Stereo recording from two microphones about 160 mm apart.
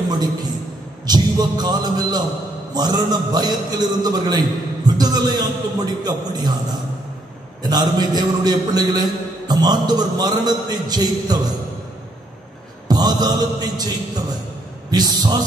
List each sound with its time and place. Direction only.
0.1 s a man's voice: 25° right (ahead or behind)
12.8 s music: 25° right (ahead or behind)
14.9 s a man's voice: 25° right (ahead or behind)